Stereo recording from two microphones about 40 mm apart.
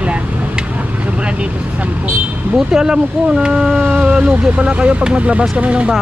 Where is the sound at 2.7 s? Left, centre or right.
Centre; by 5.9 s right.